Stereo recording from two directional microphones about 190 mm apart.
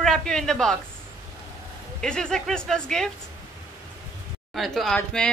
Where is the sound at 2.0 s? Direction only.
5° left (ahead or behind).